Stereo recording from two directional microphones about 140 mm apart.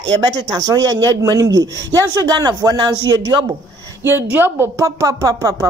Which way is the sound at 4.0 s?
15° right (ahead or behind).